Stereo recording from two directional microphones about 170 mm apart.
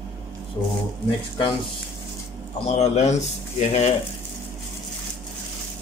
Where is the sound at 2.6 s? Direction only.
40° left (ahead or behind).